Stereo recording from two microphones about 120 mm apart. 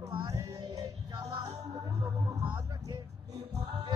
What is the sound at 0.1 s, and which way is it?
Music, 35° right (ahead or behind).